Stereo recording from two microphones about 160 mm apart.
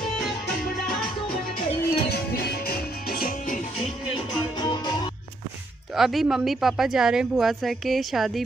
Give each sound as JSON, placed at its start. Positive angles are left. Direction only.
{"t": 1.9, "sound": "music", "side_deg": 80}
{"t": 4.6, "sound": "music", "side_deg": 25}
{"t": 5.9, "sound": "speech", "side_deg": 0}